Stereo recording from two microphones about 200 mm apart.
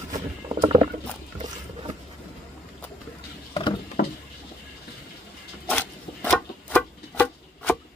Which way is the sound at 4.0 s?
50° left (ahead or behind).